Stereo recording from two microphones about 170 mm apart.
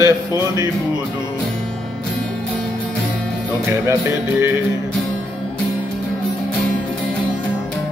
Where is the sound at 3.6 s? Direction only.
15° right (ahead or behind).